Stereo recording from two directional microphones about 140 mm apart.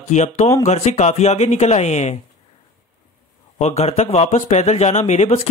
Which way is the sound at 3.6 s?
50° left (ahead or behind).